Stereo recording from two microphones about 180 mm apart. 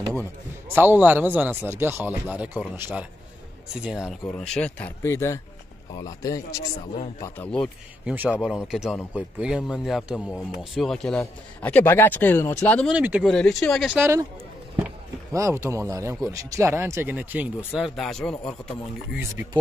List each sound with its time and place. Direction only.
0.7 s a man's voice: 10° right (ahead or behind); by 7.4 s 15° left (ahead or behind)
7.5 s a man's voice: 5° left (ahead or behind)
8.1 s a man's voice: 5° right (ahead or behind)
12.9 s speech: 5° right (ahead or behind)
13.3 s a man's voice: 5° left (ahead or behind)
13.9 s speech: 15° right (ahead or behind)
15.3 s a man's voice: 15° right (ahead or behind); by 18.5 s 5° left (ahead or behind)